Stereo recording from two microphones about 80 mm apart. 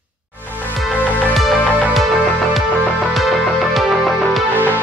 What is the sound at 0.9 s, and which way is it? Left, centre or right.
Music, left.